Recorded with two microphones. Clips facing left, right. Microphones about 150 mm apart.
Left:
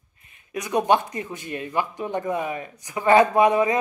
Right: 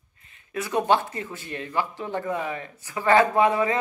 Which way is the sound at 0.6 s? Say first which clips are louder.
Left 2 dB; 15° left (ahead or behind).